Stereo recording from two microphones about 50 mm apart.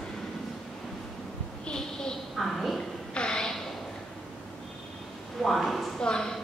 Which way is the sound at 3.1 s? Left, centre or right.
Centre.